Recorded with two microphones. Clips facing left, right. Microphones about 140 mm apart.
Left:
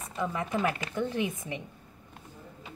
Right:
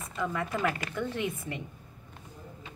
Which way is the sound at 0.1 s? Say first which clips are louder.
Left 1 dB; 25° left (ahead or behind).